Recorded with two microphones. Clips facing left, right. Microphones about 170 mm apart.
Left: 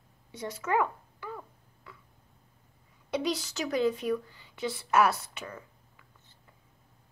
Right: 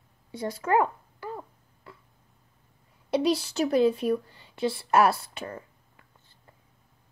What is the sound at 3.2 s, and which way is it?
Speech, 30° right (ahead or behind).